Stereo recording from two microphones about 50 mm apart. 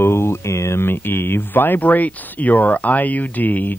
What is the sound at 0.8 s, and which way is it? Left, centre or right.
Speech, left.